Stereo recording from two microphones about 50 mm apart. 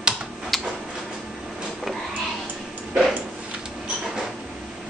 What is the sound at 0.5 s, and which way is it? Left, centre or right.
Tick-tock, centre.